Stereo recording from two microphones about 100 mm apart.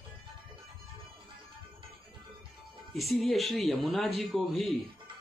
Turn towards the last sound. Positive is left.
turn(degrees=0)  # may be behind; listen again after turning